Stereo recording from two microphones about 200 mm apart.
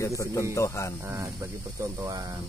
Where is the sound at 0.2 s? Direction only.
15° left (ahead or behind).